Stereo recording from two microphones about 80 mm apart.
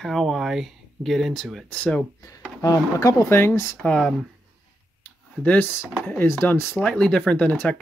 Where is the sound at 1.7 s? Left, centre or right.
Centre.